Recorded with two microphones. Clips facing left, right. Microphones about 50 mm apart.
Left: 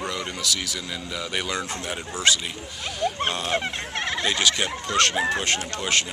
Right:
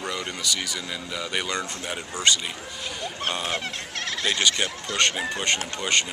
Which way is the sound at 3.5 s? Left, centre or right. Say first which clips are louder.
Left 4 dB; centre.